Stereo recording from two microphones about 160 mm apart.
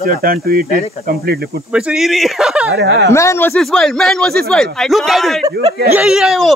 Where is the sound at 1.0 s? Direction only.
70° right (ahead or behind).